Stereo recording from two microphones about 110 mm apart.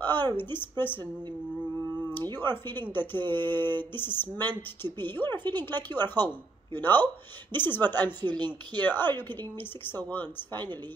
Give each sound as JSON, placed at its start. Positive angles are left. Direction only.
{"t": 0.0, "sound": "speech", "side_deg": 20}
{"t": 2.3, "sound": "speech", "side_deg": 20}
{"t": 8.2, "sound": "speech", "side_deg": -45}
{"t": 8.7, "sound": "speech", "side_deg": 20}